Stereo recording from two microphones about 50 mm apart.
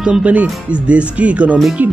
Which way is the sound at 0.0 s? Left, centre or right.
Right.